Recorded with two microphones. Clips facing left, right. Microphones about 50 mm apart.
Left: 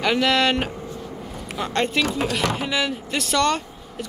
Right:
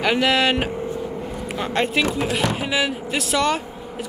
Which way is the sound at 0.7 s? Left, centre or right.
Centre.